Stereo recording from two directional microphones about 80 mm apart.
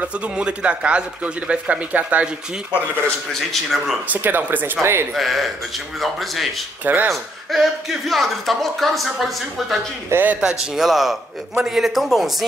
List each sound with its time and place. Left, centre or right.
0.0 s speech: centre
3.3 s speech: centre
4.1 s speech: right
5.1 s speech: centre
6.8 s speech: right
7.5 s speech: centre
10.0 s speech: right
10.8 s speech: centre